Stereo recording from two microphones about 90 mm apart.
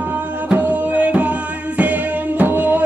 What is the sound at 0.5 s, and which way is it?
Music, 15° right (ahead or behind).